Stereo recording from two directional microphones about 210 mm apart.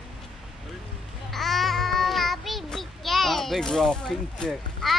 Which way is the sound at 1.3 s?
Centre (ahead or behind).